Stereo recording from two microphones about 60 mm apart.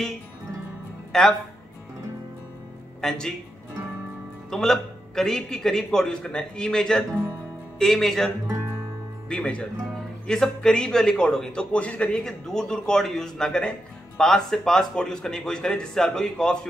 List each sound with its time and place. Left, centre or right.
1.1 s a man's voice: centre
3.0 s speech: centre
4.5 s a man's voice: centre
9.3 s a man's voice: centre
11.7 s a man's voice: left